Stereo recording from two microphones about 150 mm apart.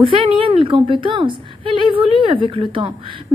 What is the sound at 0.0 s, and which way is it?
A woman's voice, 35° right (ahead or behind).